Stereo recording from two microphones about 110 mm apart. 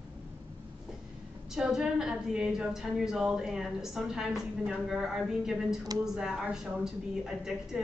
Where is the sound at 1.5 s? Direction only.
5° right (ahead or behind).